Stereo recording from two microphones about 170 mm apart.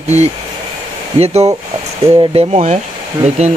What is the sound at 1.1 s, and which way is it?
Speech, 40° right (ahead or behind).